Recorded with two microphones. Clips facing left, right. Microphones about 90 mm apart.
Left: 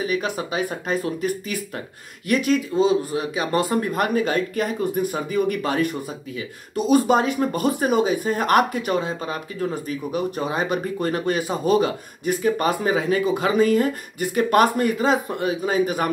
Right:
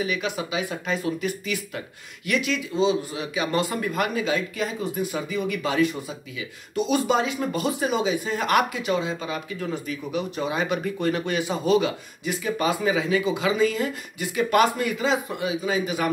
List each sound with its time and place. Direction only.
0.0 s speech: 40° left (ahead or behind)